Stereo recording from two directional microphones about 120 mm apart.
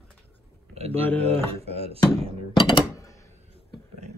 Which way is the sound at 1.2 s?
60° right (ahead or behind).